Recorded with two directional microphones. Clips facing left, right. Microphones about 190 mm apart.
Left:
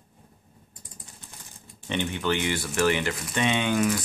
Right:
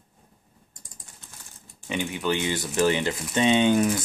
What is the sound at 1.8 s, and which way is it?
Speech, 10° right (ahead or behind).